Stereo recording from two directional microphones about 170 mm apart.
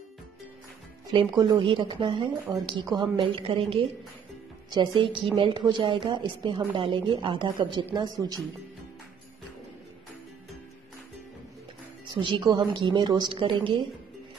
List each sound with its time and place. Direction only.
1.1 s speech: 25° right (ahead or behind)
12.1 s speech: 30° right (ahead or behind)